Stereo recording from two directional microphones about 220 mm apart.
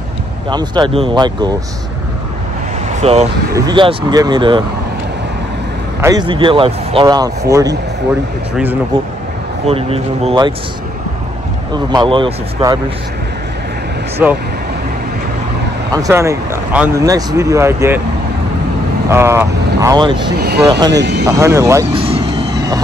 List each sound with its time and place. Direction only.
0.5 s speech: 20° right (ahead or behind)
3.0 s speech: 30° right (ahead or behind)
3.5 s speech: 20° right (ahead or behind)
5.9 s speech: 15° right (ahead or behind)
9.7 s speech: 25° right (ahead or behind)
11.7 s speech: 20° right (ahead or behind)
14.2 s speech: 5° right (ahead or behind)
15.9 s speech: 15° right (ahead or behind)
19.0 s speech: 10° right (ahead or behind)
20.3 s speech: 45° right (ahead or behind)
21.3 s speech: 15° right (ahead or behind)
21.9 s vehicle: 25° right (ahead or behind)